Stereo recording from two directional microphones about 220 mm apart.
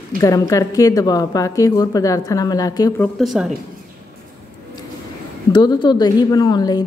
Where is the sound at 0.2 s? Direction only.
15° left (ahead or behind).